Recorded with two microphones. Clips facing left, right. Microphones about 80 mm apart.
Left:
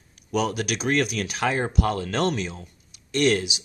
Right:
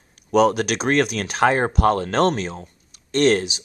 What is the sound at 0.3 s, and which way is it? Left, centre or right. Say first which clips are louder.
Speech: right 8 dB; right.